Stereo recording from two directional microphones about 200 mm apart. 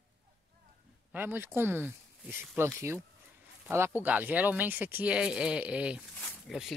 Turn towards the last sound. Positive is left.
turn(degrees=10)  # may be behind; listen again after turning